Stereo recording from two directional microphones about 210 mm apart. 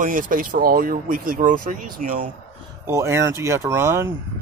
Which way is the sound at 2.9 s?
15° right (ahead or behind).